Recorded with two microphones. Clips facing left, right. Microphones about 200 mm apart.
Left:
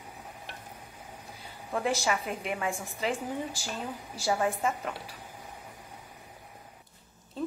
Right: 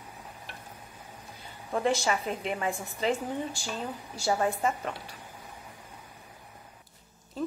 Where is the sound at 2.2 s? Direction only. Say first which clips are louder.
Right 2 dB; 30° right (ahead or behind).